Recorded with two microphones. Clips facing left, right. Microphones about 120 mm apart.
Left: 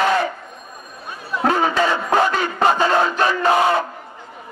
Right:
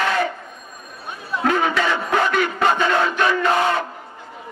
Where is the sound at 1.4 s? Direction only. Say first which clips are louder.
Left 2 dB; 30° left (ahead or behind).